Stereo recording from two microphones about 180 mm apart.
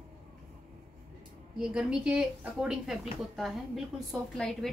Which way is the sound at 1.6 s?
5° right (ahead or behind).